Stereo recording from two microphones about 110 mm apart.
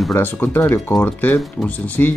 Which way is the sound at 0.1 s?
20° left (ahead or behind).